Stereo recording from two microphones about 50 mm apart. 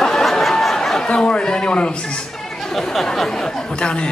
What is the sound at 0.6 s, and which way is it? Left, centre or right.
Chatter, centre.